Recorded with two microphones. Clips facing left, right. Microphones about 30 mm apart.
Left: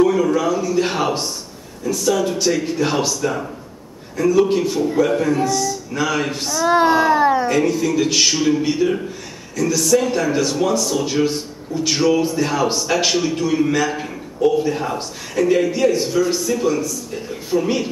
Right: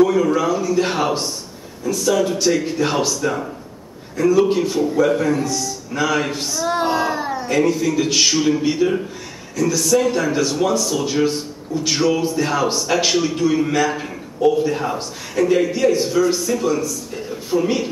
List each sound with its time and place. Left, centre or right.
0.0 s a man's voice: centre
6.6 s a child's voice: centre
7.4 s speech: centre